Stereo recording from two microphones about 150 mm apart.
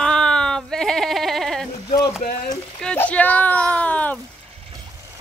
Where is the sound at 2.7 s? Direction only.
5° left (ahead or behind).